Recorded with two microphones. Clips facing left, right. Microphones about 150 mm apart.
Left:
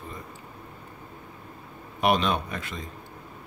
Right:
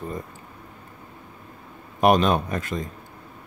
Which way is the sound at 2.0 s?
45° right (ahead or behind).